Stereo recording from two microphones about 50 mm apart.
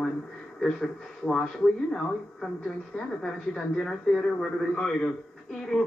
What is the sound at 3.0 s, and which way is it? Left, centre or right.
A man's voice, centre.